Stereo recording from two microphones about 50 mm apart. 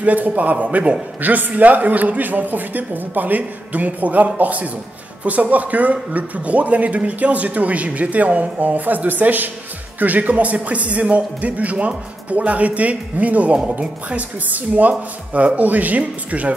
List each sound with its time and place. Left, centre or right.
0.0 s a man's voice: right